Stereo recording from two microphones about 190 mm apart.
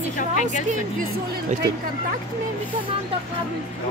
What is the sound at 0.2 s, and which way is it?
Speech, 40° left (ahead or behind).